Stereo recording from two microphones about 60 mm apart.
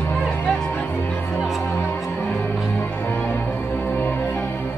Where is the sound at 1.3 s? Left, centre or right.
Centre.